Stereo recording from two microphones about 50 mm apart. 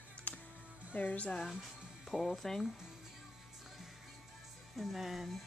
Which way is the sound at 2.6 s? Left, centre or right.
Centre.